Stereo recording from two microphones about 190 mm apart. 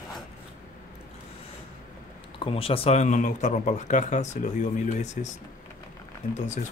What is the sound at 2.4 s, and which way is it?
Speech, 30° left (ahead or behind).